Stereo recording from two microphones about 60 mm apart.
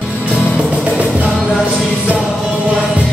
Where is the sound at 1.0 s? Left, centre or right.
Right.